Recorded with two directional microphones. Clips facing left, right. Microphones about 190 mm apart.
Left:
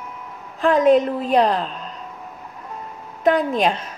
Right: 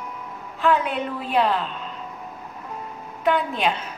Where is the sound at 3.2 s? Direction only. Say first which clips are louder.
Left 4 dB; 40° left (ahead or behind).